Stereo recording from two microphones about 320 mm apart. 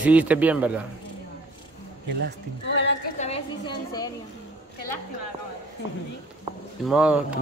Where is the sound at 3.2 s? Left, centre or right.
Centre.